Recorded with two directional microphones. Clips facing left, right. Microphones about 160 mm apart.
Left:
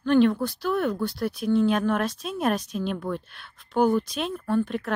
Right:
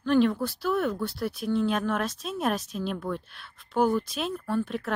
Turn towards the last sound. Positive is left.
turn(degrees=0)  # may be behind; listen again after turning